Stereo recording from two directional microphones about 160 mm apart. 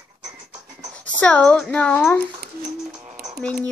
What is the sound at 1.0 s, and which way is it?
Speech, 10° left (ahead or behind).